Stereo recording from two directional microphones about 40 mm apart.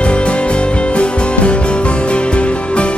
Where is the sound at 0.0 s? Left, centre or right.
Left.